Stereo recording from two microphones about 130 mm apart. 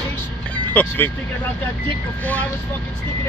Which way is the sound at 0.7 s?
15° left (ahead or behind).